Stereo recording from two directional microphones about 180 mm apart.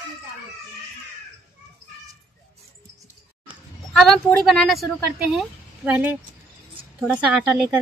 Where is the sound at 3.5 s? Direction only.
Centre (ahead or behind).